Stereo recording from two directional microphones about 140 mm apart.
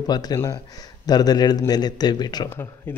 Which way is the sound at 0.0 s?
30° left (ahead or behind).